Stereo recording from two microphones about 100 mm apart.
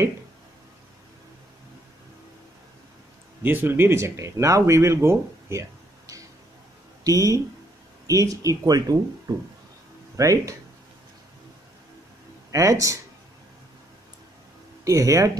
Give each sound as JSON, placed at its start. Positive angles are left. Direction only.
{"t": 3.4, "sound": "speech", "side_deg": -20}
{"t": 9.3, "sound": "a sound", "side_deg": -45}
{"t": 10.1, "sound": "speech", "side_deg": -35}
{"t": 12.4, "sound": "speech", "side_deg": -30}
{"t": 14.9, "sound": "speech", "side_deg": -30}